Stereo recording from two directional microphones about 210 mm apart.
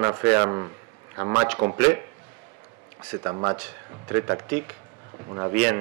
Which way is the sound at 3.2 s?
20° right (ahead or behind).